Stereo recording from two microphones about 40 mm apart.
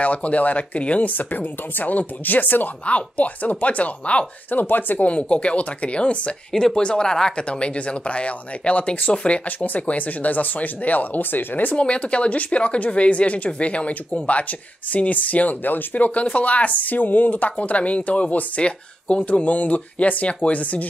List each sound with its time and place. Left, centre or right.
0.0 s speech: left
2.8 s speech: left
4.5 s speech: left
5.0 s speech: left
6.5 s speech: centre
7.4 s speech: left
11.7 s speech: left